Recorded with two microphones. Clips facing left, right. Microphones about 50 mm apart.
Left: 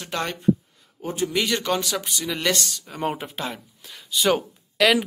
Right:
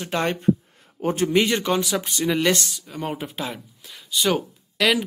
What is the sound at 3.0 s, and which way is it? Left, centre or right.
Speech, centre.